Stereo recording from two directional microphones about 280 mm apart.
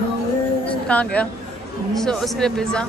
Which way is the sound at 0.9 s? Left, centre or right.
Centre.